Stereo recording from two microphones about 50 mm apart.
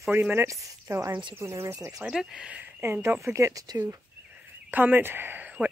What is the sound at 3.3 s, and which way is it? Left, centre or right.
Speech, right.